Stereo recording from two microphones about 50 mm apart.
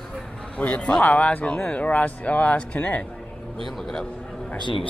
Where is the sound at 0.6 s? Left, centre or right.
Left.